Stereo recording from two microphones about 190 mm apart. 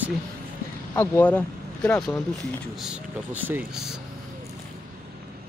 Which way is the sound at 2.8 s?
5° right (ahead or behind).